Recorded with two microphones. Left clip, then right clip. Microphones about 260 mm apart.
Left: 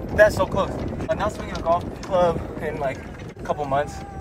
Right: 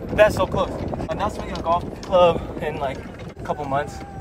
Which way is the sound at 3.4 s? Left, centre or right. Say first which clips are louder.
Left 1 dB; centre.